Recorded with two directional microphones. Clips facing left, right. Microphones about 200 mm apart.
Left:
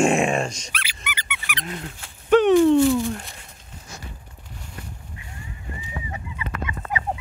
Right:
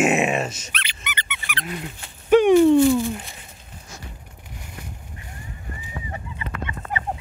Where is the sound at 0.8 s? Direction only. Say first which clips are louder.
Right 1 dB; 10° left (ahead or behind).